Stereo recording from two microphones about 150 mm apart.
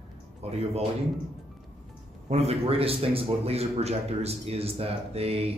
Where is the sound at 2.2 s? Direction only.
45° right (ahead or behind).